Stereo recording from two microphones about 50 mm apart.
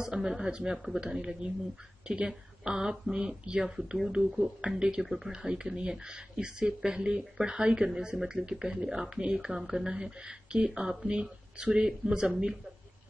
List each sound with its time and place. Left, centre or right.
0.0 s speech: centre